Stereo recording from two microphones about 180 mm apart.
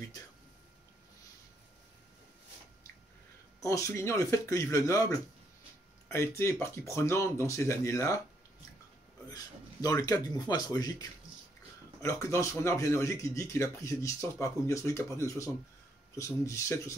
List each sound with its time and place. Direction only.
3.6 s speech: 15° left (ahead or behind)
9.3 s speech: 20° left (ahead or behind)